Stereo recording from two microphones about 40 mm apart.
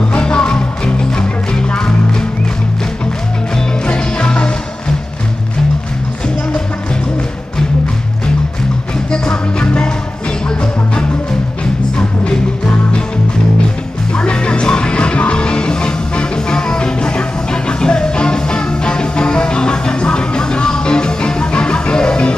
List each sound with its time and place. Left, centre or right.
0.1 s music: left
3.8 s music: left
9.1 s music: left
14.1 s music: left